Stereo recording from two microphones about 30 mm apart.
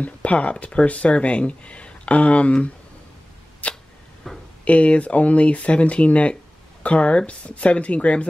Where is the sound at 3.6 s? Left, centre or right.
Left.